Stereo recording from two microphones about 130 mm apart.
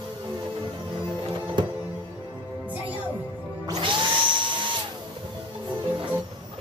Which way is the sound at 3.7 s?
40° right (ahead or behind).